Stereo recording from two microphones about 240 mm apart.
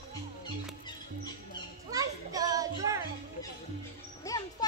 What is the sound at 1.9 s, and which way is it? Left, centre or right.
Children playing, centre.